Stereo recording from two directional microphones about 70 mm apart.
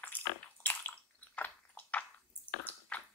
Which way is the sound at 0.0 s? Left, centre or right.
Left.